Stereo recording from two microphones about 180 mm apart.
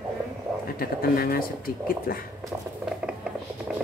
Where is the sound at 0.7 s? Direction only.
55° left (ahead or behind).